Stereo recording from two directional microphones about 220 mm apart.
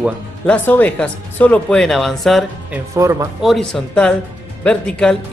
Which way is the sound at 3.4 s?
Centre (ahead or behind).